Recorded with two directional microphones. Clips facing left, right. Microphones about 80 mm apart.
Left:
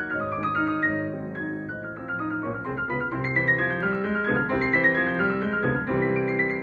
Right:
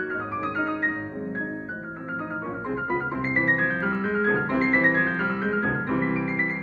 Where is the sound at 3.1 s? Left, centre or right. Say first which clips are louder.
Right 1 dB; right.